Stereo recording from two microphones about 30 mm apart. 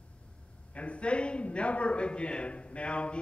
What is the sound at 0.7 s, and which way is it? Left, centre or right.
A man's voice, left.